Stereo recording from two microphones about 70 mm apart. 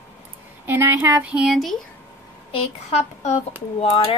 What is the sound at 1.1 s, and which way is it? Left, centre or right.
Music, centre.